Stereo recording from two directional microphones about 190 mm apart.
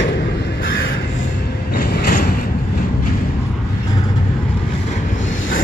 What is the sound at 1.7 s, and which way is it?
Mechanisms, 55° left (ahead or behind).